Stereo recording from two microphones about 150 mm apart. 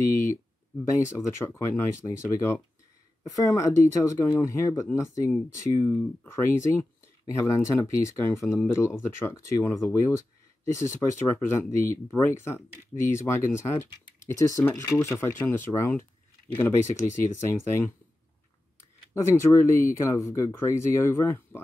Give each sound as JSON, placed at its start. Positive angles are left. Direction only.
{"t": 0.1, "sound": "speech", "side_deg": 20}
{"t": 19.2, "sound": "speech", "side_deg": 20}